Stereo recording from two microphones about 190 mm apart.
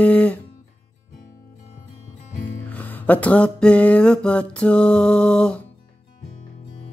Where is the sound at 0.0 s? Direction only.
5° left (ahead or behind).